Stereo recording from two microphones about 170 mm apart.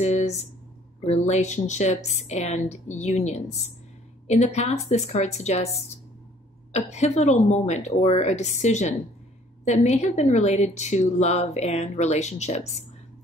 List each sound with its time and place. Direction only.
0.0 s a woman's voice: 40° left (ahead or behind)
6.7 s a woman's voice: 40° left (ahead or behind)